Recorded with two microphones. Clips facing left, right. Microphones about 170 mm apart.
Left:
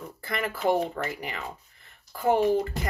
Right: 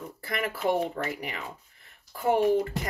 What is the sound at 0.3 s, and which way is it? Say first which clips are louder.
Speech: left 2 dB; 35° left (ahead or behind).